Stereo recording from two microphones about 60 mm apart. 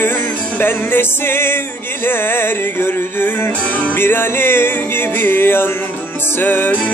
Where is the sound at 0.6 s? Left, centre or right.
Left.